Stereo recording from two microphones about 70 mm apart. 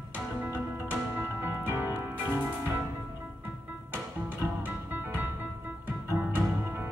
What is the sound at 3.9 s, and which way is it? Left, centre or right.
Music, right.